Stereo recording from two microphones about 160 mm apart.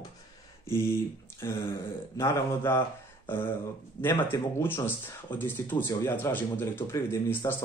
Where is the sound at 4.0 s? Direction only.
10° left (ahead or behind).